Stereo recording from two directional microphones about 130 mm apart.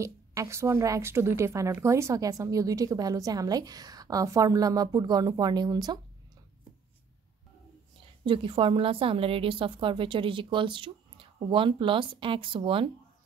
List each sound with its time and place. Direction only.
0.0 s a woman's voice: 25° right (ahead or behind)
8.3 s a woman's voice: 40° right (ahead or behind)